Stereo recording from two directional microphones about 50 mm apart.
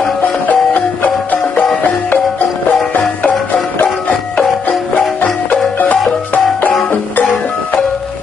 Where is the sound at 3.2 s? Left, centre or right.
Left.